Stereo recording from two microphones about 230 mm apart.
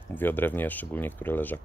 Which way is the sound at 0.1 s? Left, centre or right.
Centre.